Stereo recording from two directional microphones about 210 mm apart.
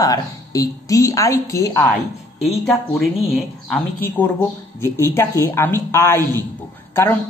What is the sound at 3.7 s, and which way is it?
A woman's voice, 10° left (ahead or behind).